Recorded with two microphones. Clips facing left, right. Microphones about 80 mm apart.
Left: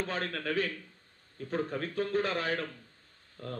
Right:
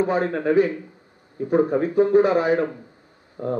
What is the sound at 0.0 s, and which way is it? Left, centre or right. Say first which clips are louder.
A man's voice: right 13 dB; centre.